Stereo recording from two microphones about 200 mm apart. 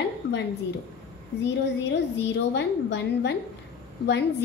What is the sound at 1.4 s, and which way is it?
A woman's voice, 60° left (ahead or behind).